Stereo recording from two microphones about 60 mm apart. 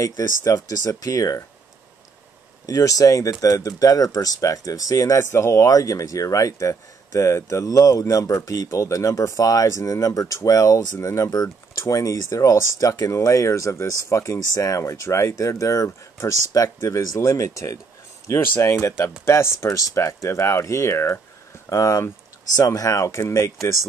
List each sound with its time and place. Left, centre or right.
0.0 s speech: left
2.6 s speech: left
5.2 s speech: left
7.6 s speech: left
12.8 s speech: left
15.6 s speech: left
21.6 s speech: left